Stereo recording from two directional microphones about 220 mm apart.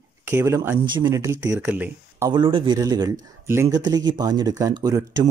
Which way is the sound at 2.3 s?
20° right (ahead or behind).